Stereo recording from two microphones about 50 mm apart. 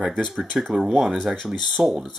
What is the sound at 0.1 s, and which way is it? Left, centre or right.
Speech, centre.